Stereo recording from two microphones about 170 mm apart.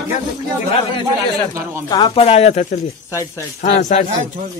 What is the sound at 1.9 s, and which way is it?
Speech, 30° left (ahead or behind).